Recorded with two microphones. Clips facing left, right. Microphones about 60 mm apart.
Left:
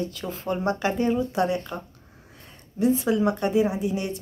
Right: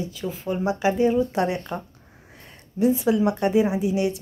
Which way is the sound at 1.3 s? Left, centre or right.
Right.